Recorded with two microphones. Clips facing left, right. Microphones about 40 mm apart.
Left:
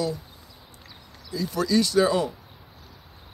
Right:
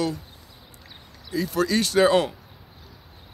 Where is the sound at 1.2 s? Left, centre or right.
Right.